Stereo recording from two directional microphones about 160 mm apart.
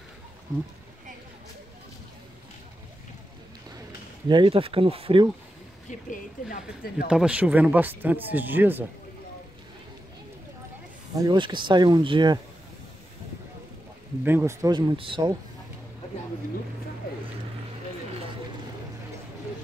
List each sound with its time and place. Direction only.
4.3 s speech: 30° right (ahead or behind)
5.9 s speech: 55° left (ahead or behind)
7.1 s speech: 5° right (ahead or behind)
11.1 s speech: 30° right (ahead or behind)
14.2 s speech: 15° right (ahead or behind)
14.8 s speech: 30° right (ahead or behind)